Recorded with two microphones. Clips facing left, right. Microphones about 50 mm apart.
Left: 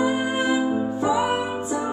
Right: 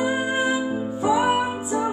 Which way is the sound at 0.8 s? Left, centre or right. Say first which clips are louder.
Right 1 dB; centre.